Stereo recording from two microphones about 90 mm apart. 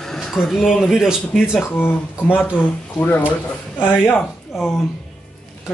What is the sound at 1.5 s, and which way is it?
Speech, 20° left (ahead or behind).